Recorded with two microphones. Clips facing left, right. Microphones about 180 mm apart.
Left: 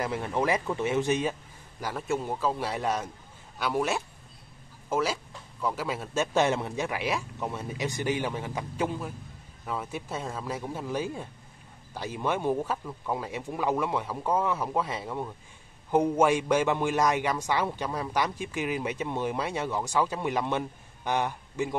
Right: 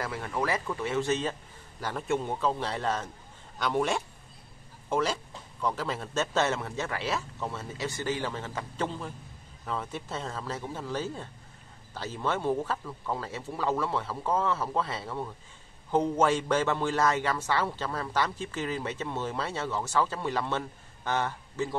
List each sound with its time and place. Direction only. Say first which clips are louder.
0.0 s a man's voice: left 3 dB; 20° left (ahead or behind)